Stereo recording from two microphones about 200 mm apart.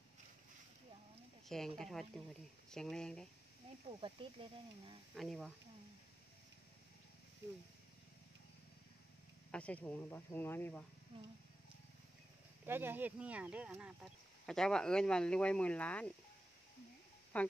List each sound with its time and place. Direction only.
1.8 s speech: centre (ahead or behind)
4.0 s speech: 25° right (ahead or behind)
5.1 s speech: centre (ahead or behind)
9.5 s speech: 5° left (ahead or behind)
12.6 s speech: 10° right (ahead or behind); by 16.1 s 5° left (ahead or behind)
17.3 s speech: 5° left (ahead or behind)